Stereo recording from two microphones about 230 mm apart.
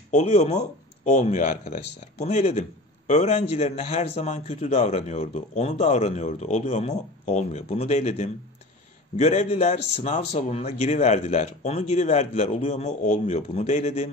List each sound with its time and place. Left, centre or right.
0.1 s a man's voice: left